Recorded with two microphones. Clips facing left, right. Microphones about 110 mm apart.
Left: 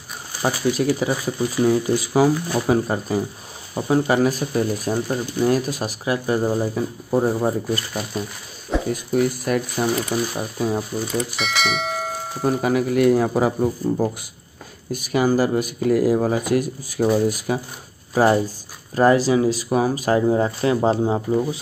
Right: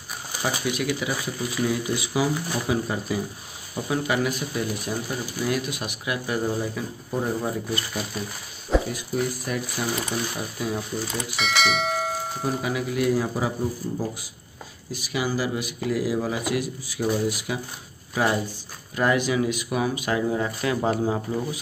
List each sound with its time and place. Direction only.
0.7 s speech: 35° left (ahead or behind)
8.9 s speech: 60° left (ahead or behind)
9.8 s speech: 40° left (ahead or behind)
11.3 s speech: centre (ahead or behind)
12.4 s speech: 50° left (ahead or behind)
14.9 s speech: 50° left (ahead or behind); by 21.5 s 25° left (ahead or behind)